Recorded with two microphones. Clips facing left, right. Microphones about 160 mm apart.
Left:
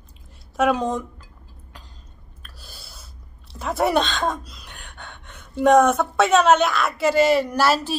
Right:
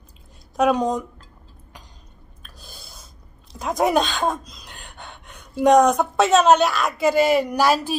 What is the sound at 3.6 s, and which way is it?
Speech, 15° right (ahead or behind).